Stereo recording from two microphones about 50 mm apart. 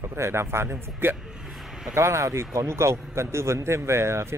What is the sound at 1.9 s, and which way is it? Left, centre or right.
A man's voice, right.